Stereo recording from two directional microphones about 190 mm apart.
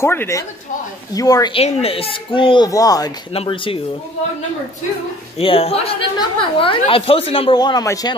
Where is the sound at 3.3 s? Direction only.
30° left (ahead or behind).